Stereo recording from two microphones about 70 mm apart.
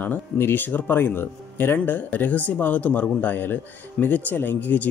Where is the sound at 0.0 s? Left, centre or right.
Left.